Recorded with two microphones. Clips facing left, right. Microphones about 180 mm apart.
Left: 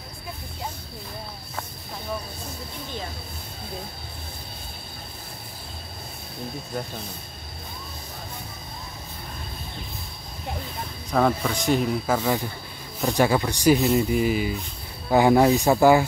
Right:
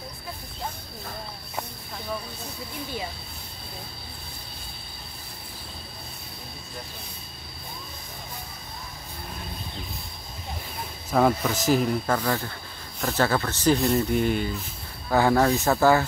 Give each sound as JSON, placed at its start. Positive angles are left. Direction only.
{"t": 11.1, "sound": "speech", "side_deg": -5}
{"t": 12.2, "sound": "speech", "side_deg": 15}
{"t": 13.8, "sound": "speech", "side_deg": 0}
{"t": 15.0, "sound": "speech", "side_deg": 15}